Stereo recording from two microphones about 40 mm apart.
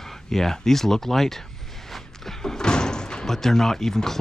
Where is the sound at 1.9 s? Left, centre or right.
Centre.